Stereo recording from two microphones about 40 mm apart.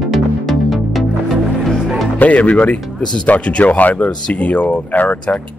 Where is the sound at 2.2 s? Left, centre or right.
Left.